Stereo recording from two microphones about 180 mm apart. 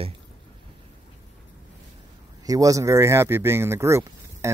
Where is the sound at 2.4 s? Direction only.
20° right (ahead or behind).